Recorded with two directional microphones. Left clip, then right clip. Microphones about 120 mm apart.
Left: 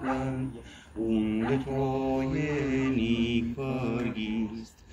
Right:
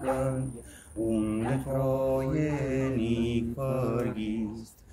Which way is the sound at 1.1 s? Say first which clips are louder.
Left 1 dB; 30° right (ahead or behind).